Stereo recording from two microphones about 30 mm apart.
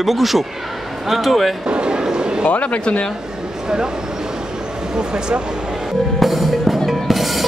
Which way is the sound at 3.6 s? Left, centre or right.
Right.